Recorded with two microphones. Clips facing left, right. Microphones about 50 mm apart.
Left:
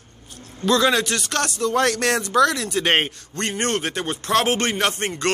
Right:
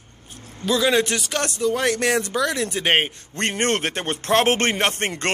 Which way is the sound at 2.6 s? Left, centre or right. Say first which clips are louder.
Even; right.